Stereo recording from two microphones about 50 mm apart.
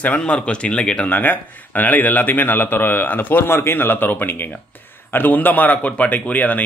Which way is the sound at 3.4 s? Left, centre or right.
Left.